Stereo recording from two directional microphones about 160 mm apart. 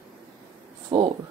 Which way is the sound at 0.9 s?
35° right (ahead or behind).